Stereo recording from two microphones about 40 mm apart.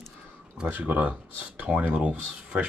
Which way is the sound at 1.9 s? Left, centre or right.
Right.